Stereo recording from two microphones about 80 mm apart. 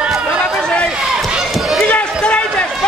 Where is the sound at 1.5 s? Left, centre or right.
Centre.